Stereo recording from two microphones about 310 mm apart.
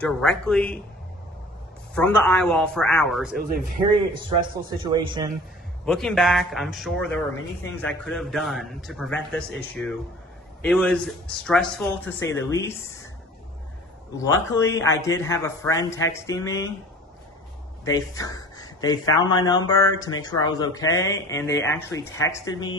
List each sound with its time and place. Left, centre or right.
0.0 s speech: centre
2.0 s speech: centre
3.3 s speech: right
4.8 s a man's voice: centre
5.9 s speech: centre
14.1 s a man's voice: centre
17.8 s a man's voice: centre